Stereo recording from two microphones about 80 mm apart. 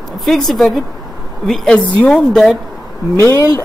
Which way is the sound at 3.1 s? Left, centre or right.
Left.